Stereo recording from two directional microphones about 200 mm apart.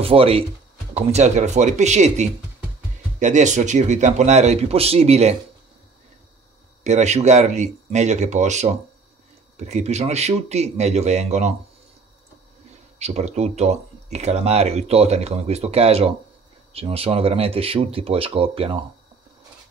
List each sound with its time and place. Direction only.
0.0 s speech: 30° right (ahead or behind)
6.8 s speech: 35° right (ahead or behind)
13.0 s speech: 35° right (ahead or behind)